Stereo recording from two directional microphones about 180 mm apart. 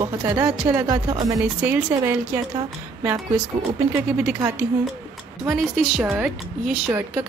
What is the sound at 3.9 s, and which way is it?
Speech, 10° right (ahead or behind).